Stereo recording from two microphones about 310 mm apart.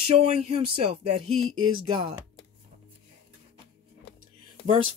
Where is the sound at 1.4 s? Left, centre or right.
Right.